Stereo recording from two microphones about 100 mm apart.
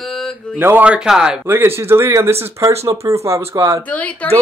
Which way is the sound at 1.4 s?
25° right (ahead or behind).